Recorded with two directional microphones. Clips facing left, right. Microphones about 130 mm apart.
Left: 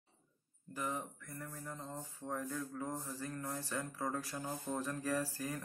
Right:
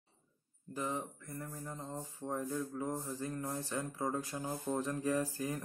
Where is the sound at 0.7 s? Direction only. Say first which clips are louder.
Right 2 dB; 20° right (ahead or behind).